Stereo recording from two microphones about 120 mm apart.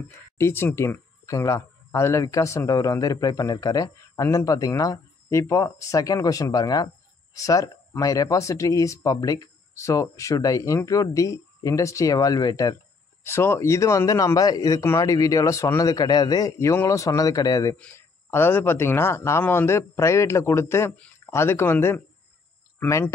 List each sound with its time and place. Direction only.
0.4 s speech: 20° left (ahead or behind)
13.2 s speech: 20° left (ahead or behind)
17.7 s speech: 15° left (ahead or behind)